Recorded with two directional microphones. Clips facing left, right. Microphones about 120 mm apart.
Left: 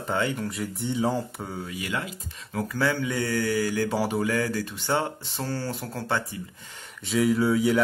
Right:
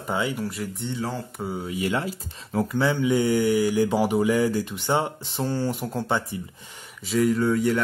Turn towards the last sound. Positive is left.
turn(degrees=5)  # may be behind; listen again after turning